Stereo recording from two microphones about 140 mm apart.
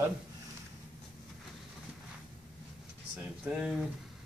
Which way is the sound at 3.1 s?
10° right (ahead or behind).